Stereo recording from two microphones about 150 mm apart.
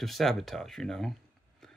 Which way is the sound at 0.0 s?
Centre (ahead or behind).